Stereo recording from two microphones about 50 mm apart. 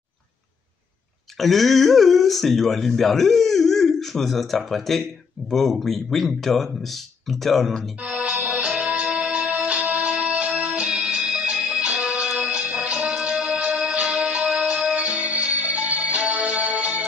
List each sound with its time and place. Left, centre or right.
1.4 s speech: centre
8.0 s music: right